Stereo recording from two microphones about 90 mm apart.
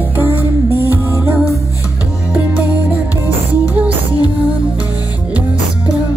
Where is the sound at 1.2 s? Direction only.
15° right (ahead or behind).